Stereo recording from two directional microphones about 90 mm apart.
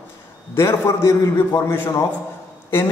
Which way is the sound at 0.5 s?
30° left (ahead or behind).